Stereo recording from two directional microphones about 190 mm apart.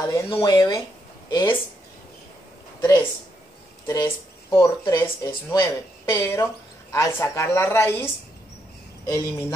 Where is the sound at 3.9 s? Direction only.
15° left (ahead or behind).